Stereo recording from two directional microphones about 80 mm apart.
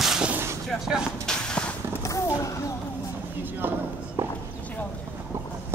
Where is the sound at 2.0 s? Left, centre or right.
Left.